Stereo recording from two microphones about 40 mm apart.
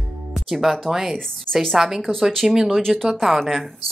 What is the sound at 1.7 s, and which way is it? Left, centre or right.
Speech, centre.